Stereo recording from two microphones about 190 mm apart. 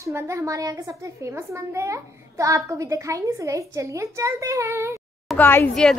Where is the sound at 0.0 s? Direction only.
15° right (ahead or behind).